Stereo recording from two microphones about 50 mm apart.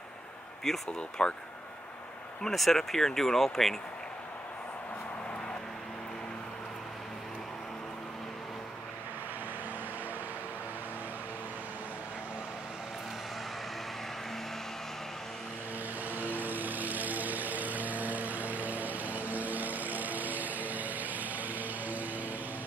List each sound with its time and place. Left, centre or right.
0.9 s speech: centre
2.5 s speech: centre
16.1 s vehicle: right